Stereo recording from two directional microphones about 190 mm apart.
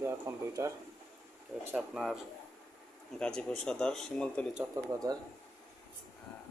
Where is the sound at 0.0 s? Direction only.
15° right (ahead or behind).